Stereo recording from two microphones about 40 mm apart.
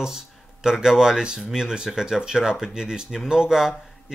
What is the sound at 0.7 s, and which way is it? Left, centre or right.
Speech, centre.